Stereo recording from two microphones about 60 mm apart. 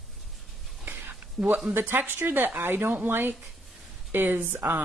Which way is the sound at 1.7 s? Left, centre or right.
Right.